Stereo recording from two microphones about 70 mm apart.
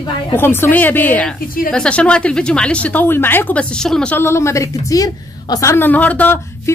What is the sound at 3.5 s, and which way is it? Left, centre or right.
Speech, centre.